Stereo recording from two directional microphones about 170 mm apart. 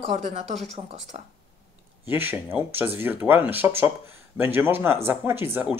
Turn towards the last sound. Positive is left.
turn(degrees=-10)  # may be behind; listen again after turning